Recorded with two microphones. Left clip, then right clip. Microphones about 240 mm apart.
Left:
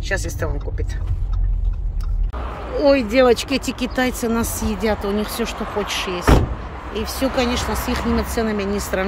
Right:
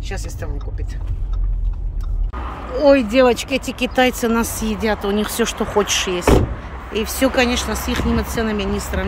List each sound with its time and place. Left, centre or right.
0.1 s speech: centre
2.8 s speech: centre